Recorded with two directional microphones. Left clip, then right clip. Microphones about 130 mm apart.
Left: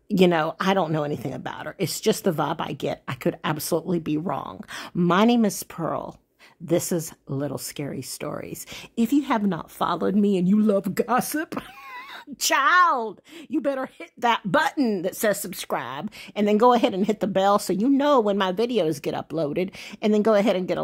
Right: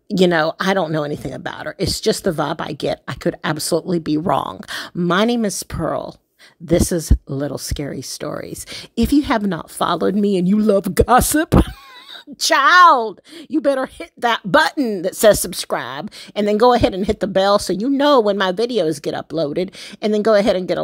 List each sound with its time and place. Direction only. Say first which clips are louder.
0.1 s speech: right 5 dB; 35° right (ahead or behind)
4.2 s speech: right 10 dB; 60° right (ahead or behind)
5.0 s a woman's voice: right 3 dB; 30° right (ahead or behind)
5.8 s speech: right 8 dB; 40° right (ahead or behind)
8.9 s speech: right 6 dB; 40° right (ahead or behind); by 11.6 s 65° right (ahead or behind)
12.5 s speech: right 9 dB; 45° right (ahead or behind)
13.7 s speech: right 10 dB; 50° right (ahead or behind)
14.3 s speech: right 2 dB; 30° right (ahead or behind)
14.8 s a woman's voice: right 4 dB; 20° right (ahead or behind)
15.1 s speech: right 16 dB; 50° right (ahead or behind)
15.5 s speech: right 6 dB; 35° right (ahead or behind)
17.9 s speech: right 7 dB; 40° right (ahead or behind)
18.6 s a woman's voice: right 5 dB; 30° right (ahead or behind)